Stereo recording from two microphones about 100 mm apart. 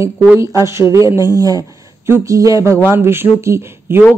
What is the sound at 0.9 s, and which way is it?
A woman's voice, 35° right (ahead or behind).